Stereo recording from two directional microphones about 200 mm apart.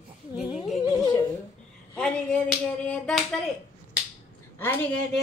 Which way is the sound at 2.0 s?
5° left (ahead or behind).